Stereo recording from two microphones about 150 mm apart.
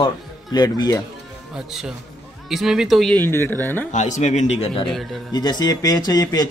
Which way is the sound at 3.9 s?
55° left (ahead or behind).